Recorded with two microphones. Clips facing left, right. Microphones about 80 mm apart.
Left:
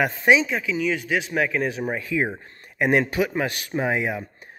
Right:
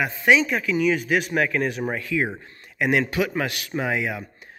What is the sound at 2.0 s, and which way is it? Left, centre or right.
Speech, centre.